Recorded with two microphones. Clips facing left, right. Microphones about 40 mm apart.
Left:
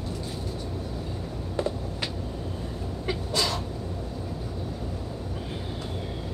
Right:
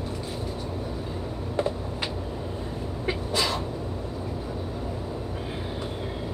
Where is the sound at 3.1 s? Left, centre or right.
Right.